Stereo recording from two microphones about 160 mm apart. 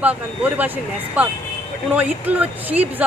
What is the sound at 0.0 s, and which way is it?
A woman's voice, 10° right (ahead or behind).